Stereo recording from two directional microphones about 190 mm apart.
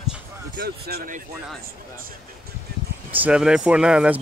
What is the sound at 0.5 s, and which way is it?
Speech, 55° right (ahead or behind).